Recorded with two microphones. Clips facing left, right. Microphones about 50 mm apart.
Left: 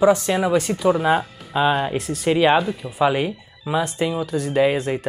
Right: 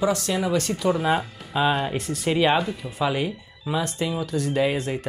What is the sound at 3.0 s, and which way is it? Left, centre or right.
Speech, centre.